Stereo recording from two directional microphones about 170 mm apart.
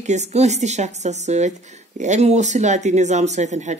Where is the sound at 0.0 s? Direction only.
40° right (ahead or behind).